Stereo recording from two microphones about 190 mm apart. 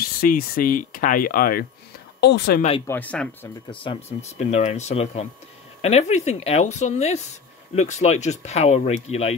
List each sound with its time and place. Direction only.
0.0 s speech: 50° left (ahead or behind)
2.9 s speech: 10° left (ahead or behind)
3.7 s speech: 25° left (ahead or behind)